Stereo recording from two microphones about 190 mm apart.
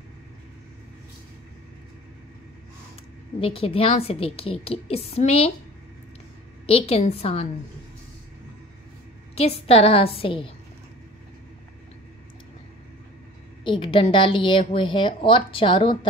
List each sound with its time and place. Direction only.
3.3 s a woman's voice: 30° left (ahead or behind)
6.6 s a woman's voice: 30° left (ahead or behind)
9.3 s a woman's voice: 30° left (ahead or behind)
13.7 s a woman's voice: 25° left (ahead or behind)